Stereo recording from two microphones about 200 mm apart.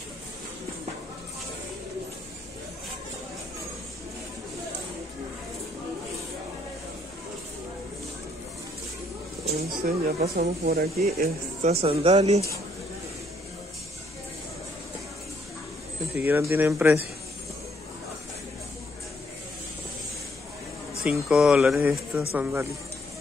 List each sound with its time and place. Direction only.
9.6 s speech: 50° right (ahead or behind)
11.8 s speech: 30° right (ahead or behind)
16.2 s speech: 10° right (ahead or behind)
21.0 s speech: 5° right (ahead or behind)